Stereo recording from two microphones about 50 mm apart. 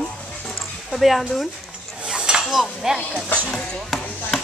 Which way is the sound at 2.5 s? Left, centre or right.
Centre.